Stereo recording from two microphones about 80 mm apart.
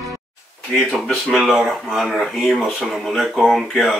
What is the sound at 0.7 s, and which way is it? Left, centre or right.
Speech, centre.